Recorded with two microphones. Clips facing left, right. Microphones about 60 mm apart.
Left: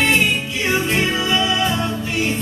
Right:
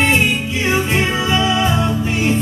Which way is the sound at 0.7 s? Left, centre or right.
Centre.